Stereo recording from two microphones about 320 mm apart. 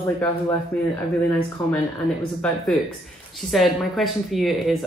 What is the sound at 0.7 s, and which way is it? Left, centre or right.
Speech, centre.